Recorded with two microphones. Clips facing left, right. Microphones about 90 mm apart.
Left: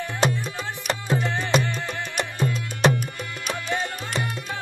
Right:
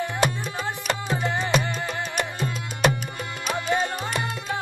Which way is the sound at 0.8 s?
20° right (ahead or behind).